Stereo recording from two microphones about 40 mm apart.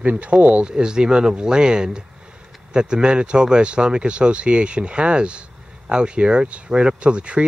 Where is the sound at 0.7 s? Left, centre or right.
Right.